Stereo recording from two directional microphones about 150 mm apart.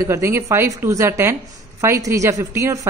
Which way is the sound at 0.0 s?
20° right (ahead or behind).